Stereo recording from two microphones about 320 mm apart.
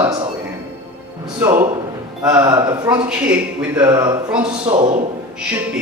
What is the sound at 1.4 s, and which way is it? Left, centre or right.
A man's voice, centre.